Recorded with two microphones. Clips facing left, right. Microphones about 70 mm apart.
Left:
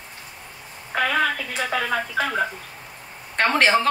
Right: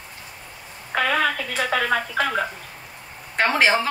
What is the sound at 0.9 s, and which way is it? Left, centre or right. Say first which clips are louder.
A woman's voice: even; right.